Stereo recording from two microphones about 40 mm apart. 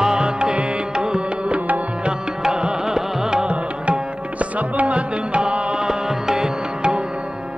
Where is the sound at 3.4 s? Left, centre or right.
Right.